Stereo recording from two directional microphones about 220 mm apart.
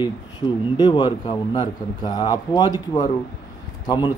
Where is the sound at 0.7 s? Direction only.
20° left (ahead or behind).